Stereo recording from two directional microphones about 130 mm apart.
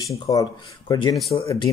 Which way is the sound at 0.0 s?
25° left (ahead or behind).